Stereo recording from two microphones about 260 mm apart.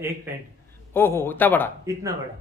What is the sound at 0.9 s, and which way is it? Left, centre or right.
Speech, centre.